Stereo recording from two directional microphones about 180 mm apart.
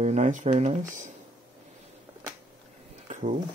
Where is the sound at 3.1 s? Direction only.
40° right (ahead or behind).